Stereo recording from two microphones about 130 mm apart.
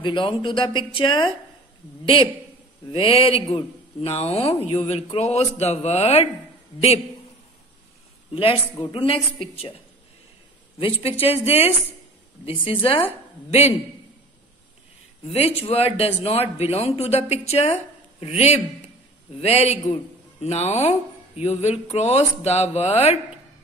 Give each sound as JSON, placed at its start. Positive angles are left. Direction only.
{"t": 0.0, "sound": "speech", "side_deg": 40}
{"t": 2.9, "sound": "speech", "side_deg": 45}
{"t": 8.3, "sound": "speech", "side_deg": 45}
{"t": 10.8, "sound": "speech", "side_deg": 45}
{"t": 15.2, "sound": "speech", "side_deg": 50}